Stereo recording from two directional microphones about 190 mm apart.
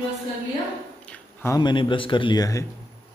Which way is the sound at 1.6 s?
25° left (ahead or behind).